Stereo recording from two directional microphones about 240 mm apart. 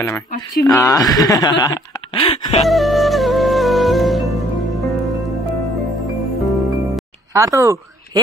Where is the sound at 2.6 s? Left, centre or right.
Centre.